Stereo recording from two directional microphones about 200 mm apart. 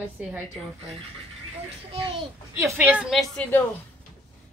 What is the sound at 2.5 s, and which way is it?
Speech, 10° right (ahead or behind).